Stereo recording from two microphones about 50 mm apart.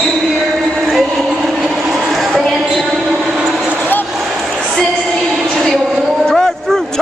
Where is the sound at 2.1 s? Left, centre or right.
Centre.